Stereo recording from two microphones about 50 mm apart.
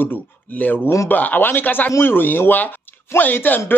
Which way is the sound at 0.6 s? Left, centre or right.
Left.